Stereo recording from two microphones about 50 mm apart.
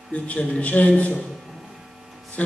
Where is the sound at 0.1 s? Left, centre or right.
Left.